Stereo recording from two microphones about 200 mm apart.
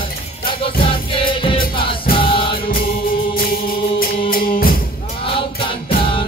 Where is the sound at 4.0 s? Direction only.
45° left (ahead or behind).